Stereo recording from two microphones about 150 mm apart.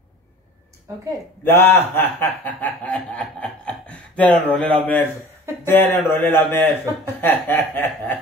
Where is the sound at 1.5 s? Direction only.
15° left (ahead or behind).